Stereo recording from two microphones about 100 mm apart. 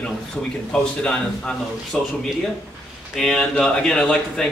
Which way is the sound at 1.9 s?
5° left (ahead or behind).